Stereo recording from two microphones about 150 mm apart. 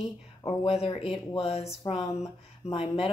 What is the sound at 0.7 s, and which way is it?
Speech, 40° left (ahead or behind).